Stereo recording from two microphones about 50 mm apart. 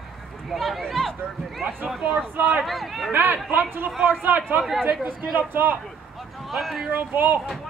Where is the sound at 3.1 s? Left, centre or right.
Right.